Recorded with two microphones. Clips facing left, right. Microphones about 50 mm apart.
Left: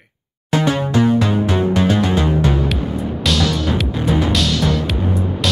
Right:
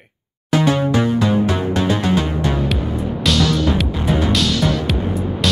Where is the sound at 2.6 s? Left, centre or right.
Centre.